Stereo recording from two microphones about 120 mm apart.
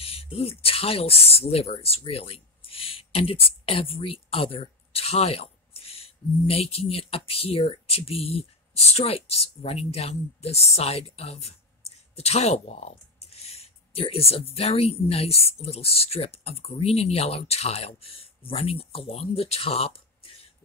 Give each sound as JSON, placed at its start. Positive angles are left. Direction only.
{"t": 0.0, "sound": "speech", "side_deg": 55}